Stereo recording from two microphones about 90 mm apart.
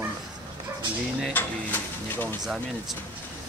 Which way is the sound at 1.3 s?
20° left (ahead or behind).